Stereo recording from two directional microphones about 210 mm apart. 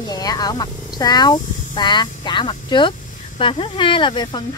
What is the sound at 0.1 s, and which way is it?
Speech, 20° left (ahead or behind).